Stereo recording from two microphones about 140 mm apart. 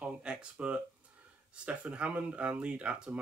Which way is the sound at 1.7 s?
10° right (ahead or behind).